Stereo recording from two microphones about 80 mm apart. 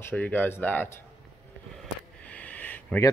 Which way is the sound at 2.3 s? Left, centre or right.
Centre.